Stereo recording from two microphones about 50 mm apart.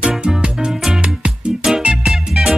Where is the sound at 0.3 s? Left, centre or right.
Centre.